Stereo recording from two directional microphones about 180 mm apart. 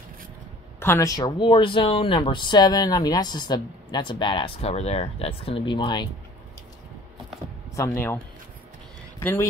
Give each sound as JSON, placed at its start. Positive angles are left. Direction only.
{"t": 0.7, "sound": "speech", "side_deg": 15}
{"t": 7.7, "sound": "speech", "side_deg": 15}
{"t": 9.2, "sound": "speech", "side_deg": 15}